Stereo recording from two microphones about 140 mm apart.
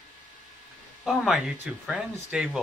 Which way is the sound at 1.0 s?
Centre (ahead or behind).